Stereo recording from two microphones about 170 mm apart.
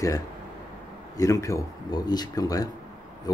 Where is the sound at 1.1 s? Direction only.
20° left (ahead or behind).